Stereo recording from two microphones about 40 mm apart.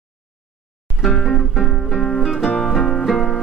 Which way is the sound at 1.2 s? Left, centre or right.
Centre.